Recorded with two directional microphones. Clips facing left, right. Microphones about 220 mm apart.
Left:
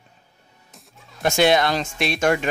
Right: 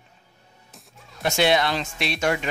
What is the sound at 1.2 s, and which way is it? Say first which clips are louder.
Speech: left 3 dB; 50° left (ahead or behind).